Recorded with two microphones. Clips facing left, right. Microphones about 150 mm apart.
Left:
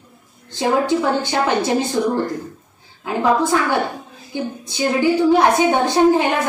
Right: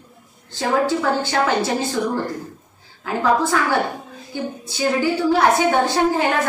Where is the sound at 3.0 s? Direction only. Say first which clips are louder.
Left 1 dB; 20° left (ahead or behind).